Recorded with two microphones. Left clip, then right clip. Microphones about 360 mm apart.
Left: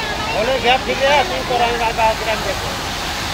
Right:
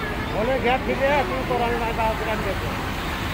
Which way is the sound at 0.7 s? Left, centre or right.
Left.